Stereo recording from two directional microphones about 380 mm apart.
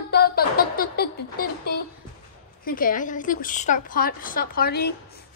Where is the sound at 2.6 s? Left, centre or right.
Left.